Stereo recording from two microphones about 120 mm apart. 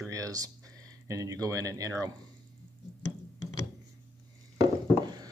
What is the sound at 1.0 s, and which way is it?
Speech, 25° right (ahead or behind).